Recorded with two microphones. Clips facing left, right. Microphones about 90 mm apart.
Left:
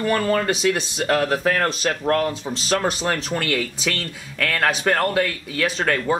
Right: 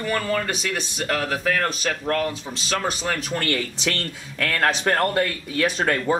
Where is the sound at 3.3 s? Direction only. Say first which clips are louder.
Left 1 dB; 15° left (ahead or behind).